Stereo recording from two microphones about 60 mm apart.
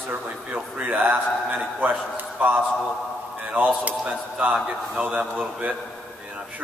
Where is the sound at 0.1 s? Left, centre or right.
Right.